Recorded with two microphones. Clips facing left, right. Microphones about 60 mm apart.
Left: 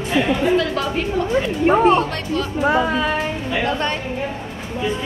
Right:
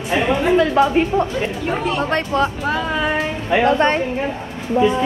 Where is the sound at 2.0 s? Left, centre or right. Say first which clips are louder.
Right 5 dB; right.